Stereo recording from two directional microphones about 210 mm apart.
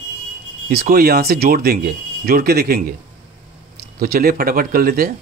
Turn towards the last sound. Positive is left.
turn(degrees=-45)  # may be behind; listen again after turning